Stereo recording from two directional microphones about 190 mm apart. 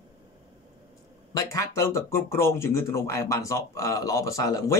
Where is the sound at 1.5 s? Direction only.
15° left (ahead or behind).